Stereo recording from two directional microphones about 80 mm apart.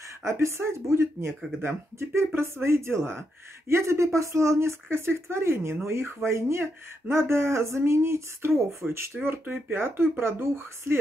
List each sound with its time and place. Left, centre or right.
0.2 s speech: right